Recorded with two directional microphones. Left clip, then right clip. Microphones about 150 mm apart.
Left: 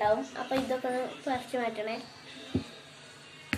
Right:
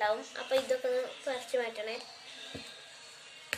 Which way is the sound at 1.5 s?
85° right.